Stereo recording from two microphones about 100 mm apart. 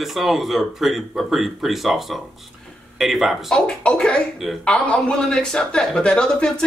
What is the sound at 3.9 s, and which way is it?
Speech, 10° left (ahead or behind).